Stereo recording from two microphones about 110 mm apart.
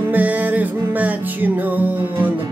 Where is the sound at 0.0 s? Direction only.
15° right (ahead or behind).